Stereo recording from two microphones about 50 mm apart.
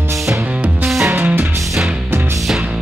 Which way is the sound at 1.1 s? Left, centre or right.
Right.